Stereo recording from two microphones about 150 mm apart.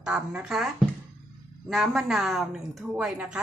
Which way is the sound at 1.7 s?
Centre (ahead or behind).